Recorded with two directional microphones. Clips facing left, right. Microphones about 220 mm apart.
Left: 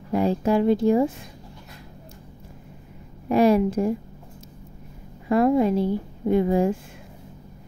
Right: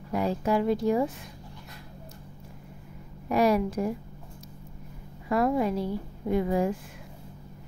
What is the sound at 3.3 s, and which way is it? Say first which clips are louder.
Speech: left 5 dB; 25° left (ahead or behind).